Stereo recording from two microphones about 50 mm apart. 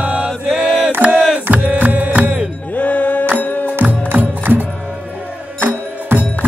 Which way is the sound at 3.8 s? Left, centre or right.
Right.